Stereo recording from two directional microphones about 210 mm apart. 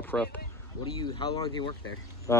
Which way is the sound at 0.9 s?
20° left (ahead or behind).